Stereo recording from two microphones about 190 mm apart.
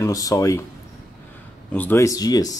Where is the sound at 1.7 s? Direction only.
10° left (ahead or behind).